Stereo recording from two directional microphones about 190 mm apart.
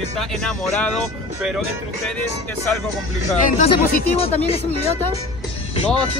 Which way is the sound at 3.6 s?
30° left (ahead or behind).